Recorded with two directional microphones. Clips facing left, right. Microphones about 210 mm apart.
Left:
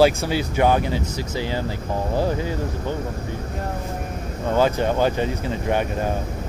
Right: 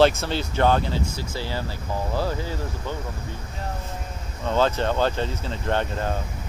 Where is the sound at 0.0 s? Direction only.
10° left (ahead or behind).